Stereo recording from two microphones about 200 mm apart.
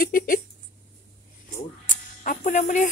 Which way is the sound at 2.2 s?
40° left (ahead or behind).